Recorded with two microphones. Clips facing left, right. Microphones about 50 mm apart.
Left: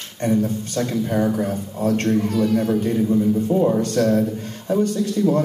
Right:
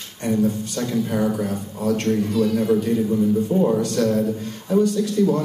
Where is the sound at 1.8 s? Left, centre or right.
Left.